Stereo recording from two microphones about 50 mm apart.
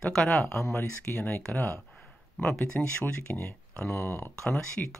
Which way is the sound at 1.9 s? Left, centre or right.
Left.